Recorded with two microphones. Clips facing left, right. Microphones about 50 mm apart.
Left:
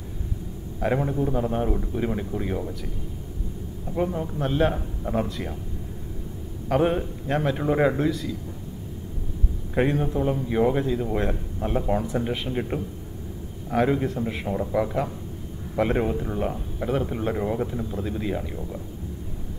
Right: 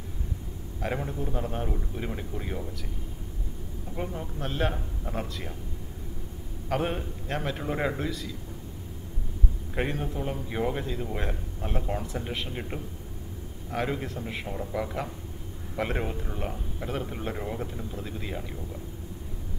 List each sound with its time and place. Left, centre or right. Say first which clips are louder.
0.7 s a man's voice: left 8 dB; centre
3.9 s speech: left 9 dB; centre
6.7 s speech: left 7 dB; centre
9.8 s a man's voice: left 8 dB; centre
14.4 s speech: left 8 dB; centre
15.7 s speech: left 7 dB; centre